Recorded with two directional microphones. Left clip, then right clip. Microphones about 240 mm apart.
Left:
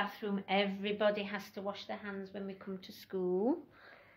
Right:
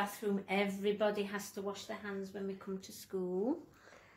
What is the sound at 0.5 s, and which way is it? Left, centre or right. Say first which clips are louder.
Speech: left 3 dB; left.